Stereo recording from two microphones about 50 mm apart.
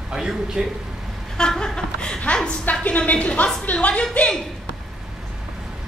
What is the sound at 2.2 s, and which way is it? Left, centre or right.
A woman's voice, left.